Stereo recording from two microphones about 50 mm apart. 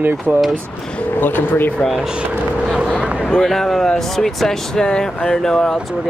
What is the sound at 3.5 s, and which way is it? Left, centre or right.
Speech, centre.